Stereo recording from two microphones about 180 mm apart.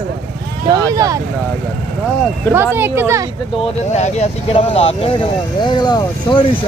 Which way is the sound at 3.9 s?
40° left (ahead or behind).